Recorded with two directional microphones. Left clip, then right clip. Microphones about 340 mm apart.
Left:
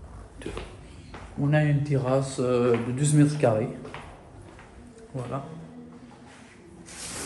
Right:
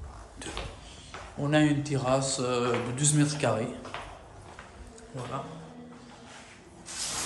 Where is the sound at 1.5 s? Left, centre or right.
Centre.